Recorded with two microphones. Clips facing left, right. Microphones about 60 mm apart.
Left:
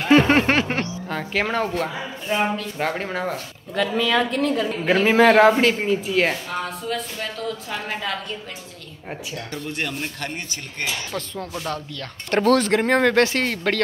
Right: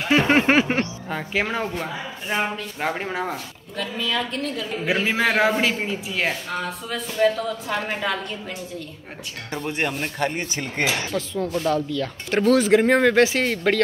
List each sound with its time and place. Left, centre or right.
0.0 s speech: centre
3.7 s a woman's voice: left
4.8 s speech: centre
9.5 s speech: right
9.9 s speech: centre
10.3 s speech: right
11.1 s speech: centre